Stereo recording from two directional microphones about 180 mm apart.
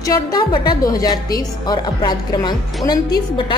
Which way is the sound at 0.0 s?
20° left (ahead or behind).